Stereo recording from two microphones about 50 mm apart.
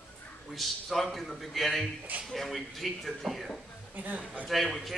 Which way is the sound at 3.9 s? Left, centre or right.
Right.